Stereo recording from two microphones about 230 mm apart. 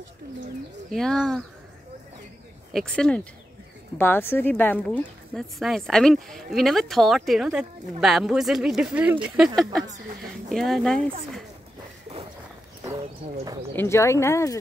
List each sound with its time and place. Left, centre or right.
0.9 s speech: centre
2.7 s speech: centre
10.5 s speech: centre
13.7 s speech: centre